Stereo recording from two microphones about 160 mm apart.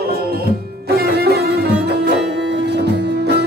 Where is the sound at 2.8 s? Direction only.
90° right.